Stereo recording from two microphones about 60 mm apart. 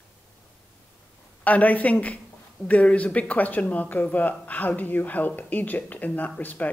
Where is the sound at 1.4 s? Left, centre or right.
Left.